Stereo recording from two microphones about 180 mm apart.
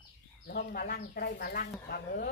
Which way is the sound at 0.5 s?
55° left (ahead or behind).